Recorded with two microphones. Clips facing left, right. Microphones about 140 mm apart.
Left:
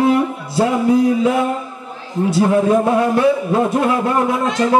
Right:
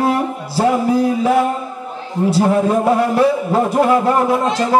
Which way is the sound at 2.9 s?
35° right (ahead or behind).